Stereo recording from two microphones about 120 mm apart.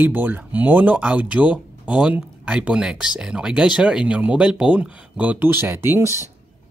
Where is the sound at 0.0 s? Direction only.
15° right (ahead or behind).